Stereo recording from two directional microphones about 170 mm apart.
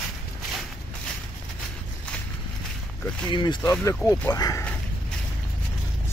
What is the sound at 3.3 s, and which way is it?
Speech, 25° left (ahead or behind).